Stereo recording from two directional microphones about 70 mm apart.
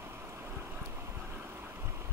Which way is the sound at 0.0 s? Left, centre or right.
Right.